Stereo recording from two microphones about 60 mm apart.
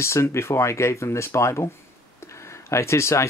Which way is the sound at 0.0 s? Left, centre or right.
Left.